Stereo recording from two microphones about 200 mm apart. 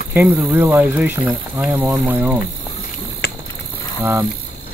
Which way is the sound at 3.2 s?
55° left (ahead or behind).